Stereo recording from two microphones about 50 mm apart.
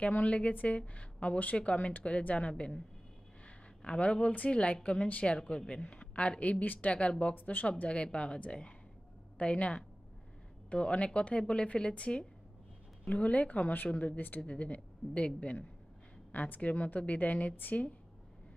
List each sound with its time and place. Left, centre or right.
0.0 s speech: left
3.4 s a sound: left
4.5 s speech: left
6.6 s speech: left
6.9 s speech: left
14.4 s speech: left